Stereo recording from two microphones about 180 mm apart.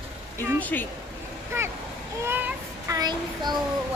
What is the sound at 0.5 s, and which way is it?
Speech, 10° left (ahead or behind).